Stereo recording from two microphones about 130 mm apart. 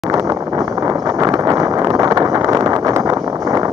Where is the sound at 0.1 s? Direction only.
25° right (ahead or behind).